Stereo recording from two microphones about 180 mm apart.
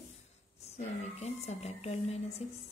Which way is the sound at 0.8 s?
35° left (ahead or behind).